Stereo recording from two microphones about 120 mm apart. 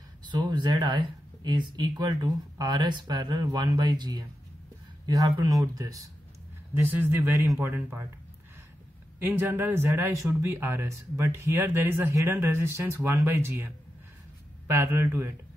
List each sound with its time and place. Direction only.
0.3 s speech: 40° right (ahead or behind)
6.7 s speech: 15° right (ahead or behind)
9.2 s speech: 20° right (ahead or behind)
14.7 s speech: 20° right (ahead or behind)